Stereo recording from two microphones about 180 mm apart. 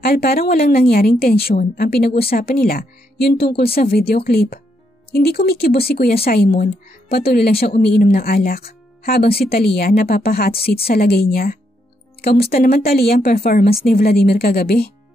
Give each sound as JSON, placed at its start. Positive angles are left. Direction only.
{"t": 0.0, "sound": "a woman's voice", "side_deg": 60}